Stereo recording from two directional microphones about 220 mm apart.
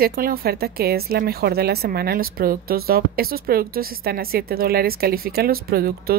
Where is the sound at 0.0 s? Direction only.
40° right (ahead or behind).